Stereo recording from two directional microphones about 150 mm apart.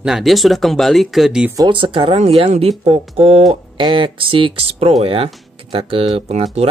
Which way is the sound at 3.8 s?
30° right (ahead or behind).